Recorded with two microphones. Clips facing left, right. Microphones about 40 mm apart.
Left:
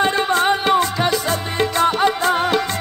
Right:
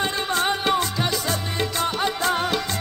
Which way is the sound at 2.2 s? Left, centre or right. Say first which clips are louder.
Left 5 dB; left.